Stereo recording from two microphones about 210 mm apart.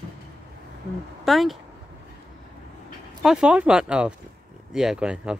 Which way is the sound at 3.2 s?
5° right (ahead or behind).